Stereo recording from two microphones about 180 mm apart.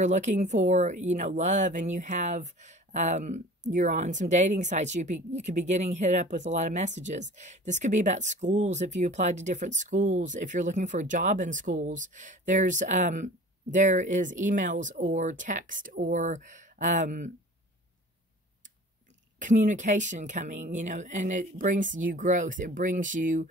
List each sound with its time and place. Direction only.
0.0 s speech: 40° right (ahead or behind)
19.3 s speech: 45° right (ahead or behind)